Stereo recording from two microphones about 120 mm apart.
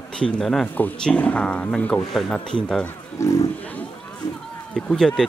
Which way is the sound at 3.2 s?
25° left (ahead or behind).